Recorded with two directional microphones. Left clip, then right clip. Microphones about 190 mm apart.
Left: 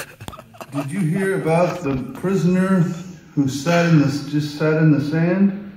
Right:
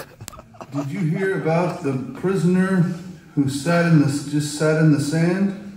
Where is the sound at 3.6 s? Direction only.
5° right (ahead or behind).